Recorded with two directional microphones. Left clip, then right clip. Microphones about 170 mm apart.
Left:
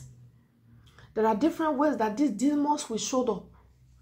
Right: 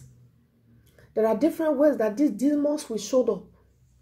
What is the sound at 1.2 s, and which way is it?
Speech, 10° left (ahead or behind).